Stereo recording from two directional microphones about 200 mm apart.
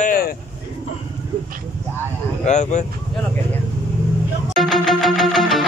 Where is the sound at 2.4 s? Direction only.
35° left (ahead or behind).